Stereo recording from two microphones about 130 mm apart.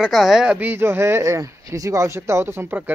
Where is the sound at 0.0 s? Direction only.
Centre (ahead or behind).